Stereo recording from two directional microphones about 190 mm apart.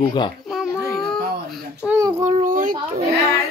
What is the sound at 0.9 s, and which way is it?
Baby cry, 5° left (ahead or behind).